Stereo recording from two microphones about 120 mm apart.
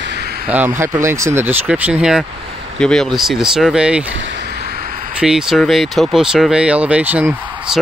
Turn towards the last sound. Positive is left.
turn(degrees=-10)  # may be behind; listen again after turning